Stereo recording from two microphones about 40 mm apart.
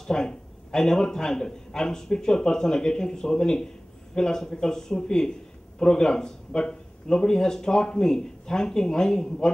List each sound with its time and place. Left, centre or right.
0.0 s a man's voice: centre